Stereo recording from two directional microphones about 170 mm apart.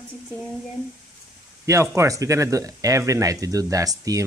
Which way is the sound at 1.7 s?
15° right (ahead or behind).